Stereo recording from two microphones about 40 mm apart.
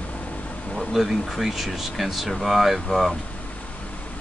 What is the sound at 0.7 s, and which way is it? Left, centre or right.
Speech, centre.